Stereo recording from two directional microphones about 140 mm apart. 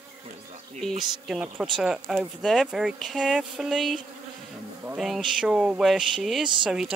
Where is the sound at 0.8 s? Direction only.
5° right (ahead or behind).